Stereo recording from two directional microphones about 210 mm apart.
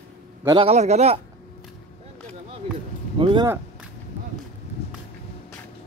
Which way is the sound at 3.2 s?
25° right (ahead or behind).